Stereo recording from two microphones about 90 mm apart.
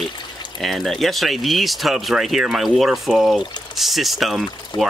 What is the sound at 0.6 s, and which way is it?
Speech, centre (ahead or behind).